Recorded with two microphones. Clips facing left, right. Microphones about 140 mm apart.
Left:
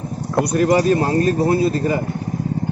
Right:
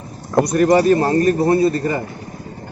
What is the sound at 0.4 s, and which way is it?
Speech, 10° left (ahead or behind).